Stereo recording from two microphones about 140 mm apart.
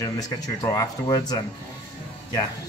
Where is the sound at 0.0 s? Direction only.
25° left (ahead or behind).